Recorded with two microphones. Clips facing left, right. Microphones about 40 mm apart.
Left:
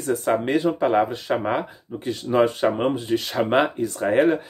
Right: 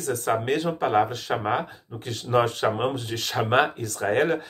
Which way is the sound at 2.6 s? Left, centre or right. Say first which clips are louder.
Left 3 dB; centre.